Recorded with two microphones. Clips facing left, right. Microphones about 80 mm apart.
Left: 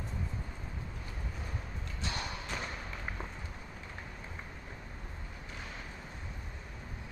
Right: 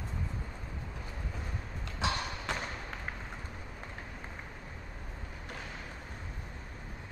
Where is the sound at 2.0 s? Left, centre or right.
Right.